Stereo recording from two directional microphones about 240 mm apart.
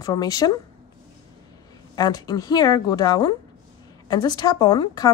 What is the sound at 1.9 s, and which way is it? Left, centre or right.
Speech, centre.